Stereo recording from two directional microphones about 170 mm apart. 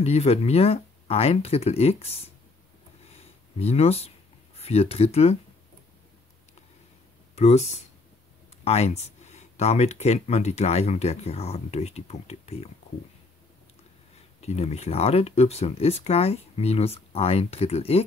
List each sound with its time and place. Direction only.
0.0 s speech: 40° left (ahead or behind)
3.1 s a sound: 35° left (ahead or behind)
4.6 s speech: 35° left (ahead or behind)
7.3 s speech: 40° left (ahead or behind)
14.4 s speech: 40° left (ahead or behind)